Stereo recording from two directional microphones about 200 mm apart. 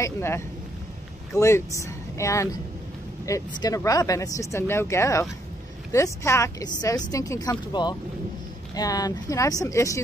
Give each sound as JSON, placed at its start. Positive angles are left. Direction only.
{"t": 0.0, "sound": "speech", "side_deg": 15}